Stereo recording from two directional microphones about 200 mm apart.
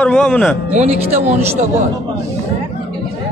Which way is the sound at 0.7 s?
30° right (ahead or behind).